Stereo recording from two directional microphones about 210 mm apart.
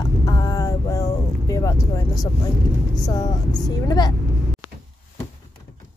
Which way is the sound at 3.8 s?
20° left (ahead or behind).